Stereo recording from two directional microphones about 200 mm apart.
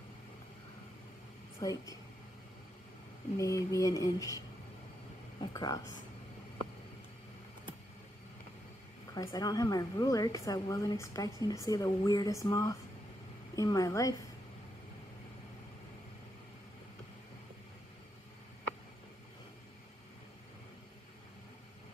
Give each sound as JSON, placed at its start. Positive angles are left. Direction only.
{"t": 1.6, "sound": "a woman's voice", "side_deg": 15}
{"t": 3.3, "sound": "a woman's voice", "side_deg": 15}
{"t": 5.4, "sound": "speech", "side_deg": 20}
{"t": 9.1, "sound": "a woman's voice", "side_deg": 20}